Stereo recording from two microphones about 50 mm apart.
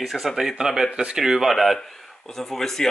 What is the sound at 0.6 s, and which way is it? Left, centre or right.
Speech, centre.